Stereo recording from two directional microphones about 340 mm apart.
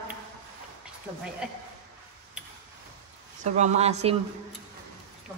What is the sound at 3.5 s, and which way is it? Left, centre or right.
Speech, centre.